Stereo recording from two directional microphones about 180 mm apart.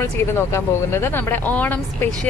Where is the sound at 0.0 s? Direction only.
15° left (ahead or behind).